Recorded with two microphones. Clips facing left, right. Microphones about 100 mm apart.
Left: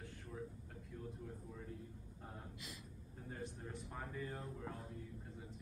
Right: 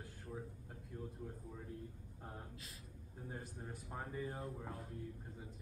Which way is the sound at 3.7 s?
10° right (ahead or behind).